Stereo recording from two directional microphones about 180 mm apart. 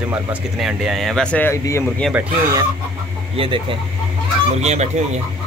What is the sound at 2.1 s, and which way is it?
Speech, 20° right (ahead or behind).